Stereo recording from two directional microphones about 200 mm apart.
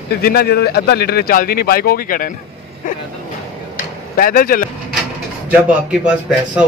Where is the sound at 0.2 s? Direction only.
50° left (ahead or behind).